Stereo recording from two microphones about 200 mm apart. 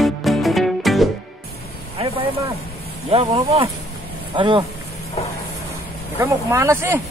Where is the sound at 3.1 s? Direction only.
30° right (ahead or behind).